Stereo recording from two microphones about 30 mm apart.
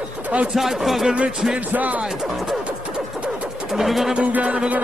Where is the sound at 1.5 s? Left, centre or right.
Right.